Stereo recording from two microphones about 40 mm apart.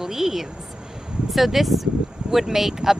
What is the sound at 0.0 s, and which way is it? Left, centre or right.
Speech, centre.